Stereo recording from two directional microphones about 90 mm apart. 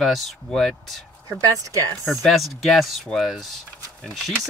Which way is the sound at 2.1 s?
Centre (ahead or behind).